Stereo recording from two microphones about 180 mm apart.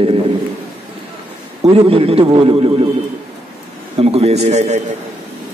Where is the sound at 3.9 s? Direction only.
35° right (ahead or behind).